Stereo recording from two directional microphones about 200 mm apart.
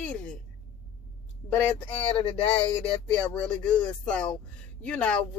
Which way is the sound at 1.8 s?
25° left (ahead or behind).